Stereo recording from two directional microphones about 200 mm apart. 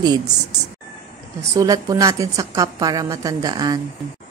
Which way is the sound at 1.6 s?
15° right (ahead or behind).